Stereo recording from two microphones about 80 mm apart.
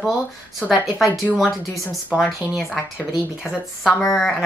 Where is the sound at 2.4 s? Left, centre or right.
Left.